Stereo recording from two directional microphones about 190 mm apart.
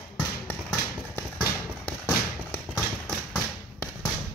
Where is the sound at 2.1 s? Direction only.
5° left (ahead or behind).